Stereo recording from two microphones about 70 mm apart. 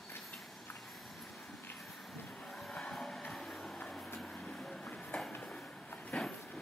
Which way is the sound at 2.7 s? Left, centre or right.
Centre.